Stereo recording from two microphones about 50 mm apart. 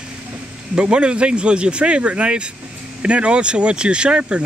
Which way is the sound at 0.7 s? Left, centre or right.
Right.